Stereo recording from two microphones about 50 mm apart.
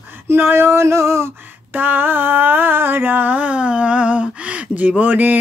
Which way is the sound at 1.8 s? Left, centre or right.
Right.